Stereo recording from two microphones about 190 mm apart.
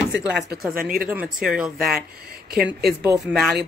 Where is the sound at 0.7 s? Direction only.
50° right (ahead or behind).